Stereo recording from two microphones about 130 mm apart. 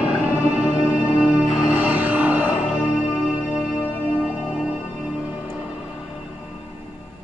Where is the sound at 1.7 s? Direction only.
10° right (ahead or behind).